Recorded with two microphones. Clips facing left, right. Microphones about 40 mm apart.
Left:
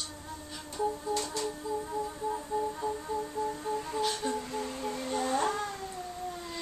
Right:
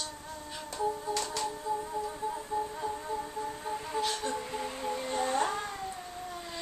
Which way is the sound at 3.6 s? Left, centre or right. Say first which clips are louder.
Right 2 dB; centre.